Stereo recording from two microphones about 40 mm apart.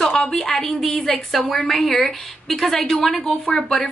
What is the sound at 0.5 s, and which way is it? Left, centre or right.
Speech, centre.